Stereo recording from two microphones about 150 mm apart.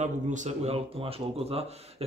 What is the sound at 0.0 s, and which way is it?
Speech, 50° right (ahead or behind).